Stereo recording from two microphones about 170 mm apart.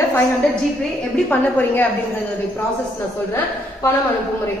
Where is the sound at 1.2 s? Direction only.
10° left (ahead or behind).